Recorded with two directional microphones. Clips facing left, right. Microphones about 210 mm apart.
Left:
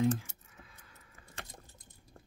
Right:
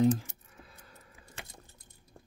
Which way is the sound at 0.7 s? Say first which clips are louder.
Right 5 dB; 35° right (ahead or behind).